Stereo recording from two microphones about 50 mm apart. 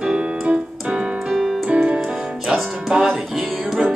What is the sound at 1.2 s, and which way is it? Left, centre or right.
Keyboard, centre.